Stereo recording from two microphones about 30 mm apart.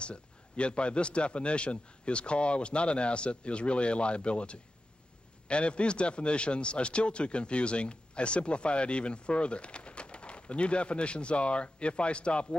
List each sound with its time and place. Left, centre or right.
0.0 s speech: left